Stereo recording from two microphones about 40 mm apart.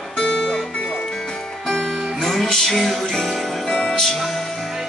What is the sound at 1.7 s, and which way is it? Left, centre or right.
Music, centre.